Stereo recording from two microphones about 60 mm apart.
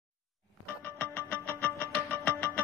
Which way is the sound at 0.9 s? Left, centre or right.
Left.